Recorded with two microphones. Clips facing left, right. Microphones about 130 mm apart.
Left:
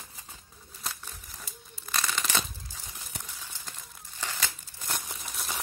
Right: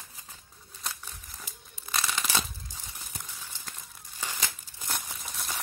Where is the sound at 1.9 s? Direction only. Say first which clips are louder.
Even; 5° right (ahead or behind).